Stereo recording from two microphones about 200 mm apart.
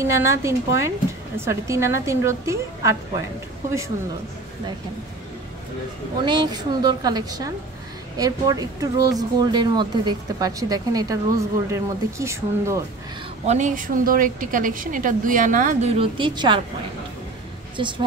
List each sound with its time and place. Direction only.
0.0 s speech: 15° right (ahead or behind)
6.2 s a woman's voice: 20° right (ahead or behind)
13.5 s a woman's voice: 40° right (ahead or behind)
16.0 s a woman's voice: 25° right (ahead or behind)
17.8 s a woman's voice: 25° right (ahead or behind)